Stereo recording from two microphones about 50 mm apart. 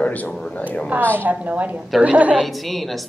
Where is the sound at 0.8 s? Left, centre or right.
Right.